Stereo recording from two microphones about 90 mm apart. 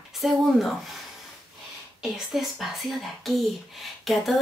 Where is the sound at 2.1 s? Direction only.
Centre (ahead or behind).